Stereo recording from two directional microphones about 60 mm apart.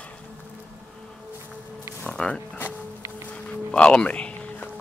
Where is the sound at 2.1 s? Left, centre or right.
Centre.